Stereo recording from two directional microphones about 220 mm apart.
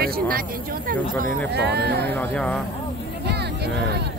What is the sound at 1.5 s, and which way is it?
Speech, 50° right (ahead or behind).